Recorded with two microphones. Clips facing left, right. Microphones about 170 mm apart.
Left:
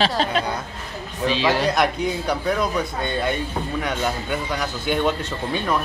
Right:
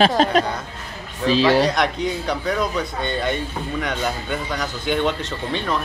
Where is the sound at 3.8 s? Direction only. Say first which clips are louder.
Right 1 dB; 5° left (ahead or behind).